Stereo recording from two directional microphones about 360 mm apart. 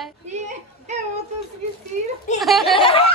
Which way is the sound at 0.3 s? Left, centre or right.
Centre.